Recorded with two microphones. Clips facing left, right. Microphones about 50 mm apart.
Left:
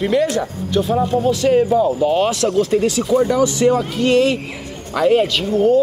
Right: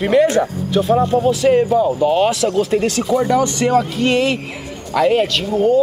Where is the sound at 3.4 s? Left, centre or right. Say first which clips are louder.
Even; right.